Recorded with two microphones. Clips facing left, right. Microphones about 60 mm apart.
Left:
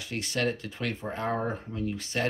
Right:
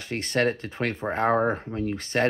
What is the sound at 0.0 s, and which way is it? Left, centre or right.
Speech, right.